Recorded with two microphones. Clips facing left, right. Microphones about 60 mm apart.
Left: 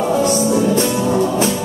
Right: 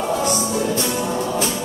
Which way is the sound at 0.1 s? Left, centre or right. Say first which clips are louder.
Left 6 dB; left.